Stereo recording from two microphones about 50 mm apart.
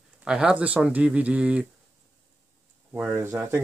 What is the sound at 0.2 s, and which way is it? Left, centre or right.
Speech, centre.